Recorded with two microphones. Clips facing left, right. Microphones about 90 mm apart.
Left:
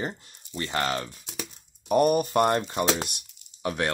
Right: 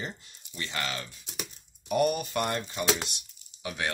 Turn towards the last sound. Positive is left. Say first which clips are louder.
# left 7 dB
turn(degrees=45)  # may be behind; listen again after turning